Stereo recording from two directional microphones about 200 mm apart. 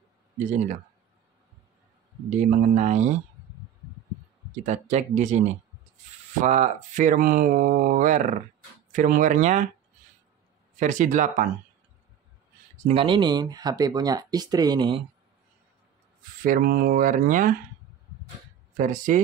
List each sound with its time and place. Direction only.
2.2 s speech: 35° right (ahead or behind)
4.5 s speech: 35° right (ahead or behind)
6.4 s speech: 35° right (ahead or behind)
10.8 s speech: 40° right (ahead or behind)
12.7 s speech: 30° right (ahead or behind)
16.4 s speech: 45° right (ahead or behind)
18.8 s speech: 40° right (ahead or behind)